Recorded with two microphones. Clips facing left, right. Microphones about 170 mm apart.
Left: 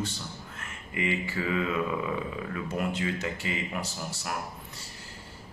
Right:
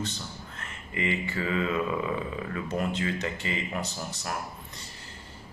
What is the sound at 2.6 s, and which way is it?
Speech, 10° left (ahead or behind).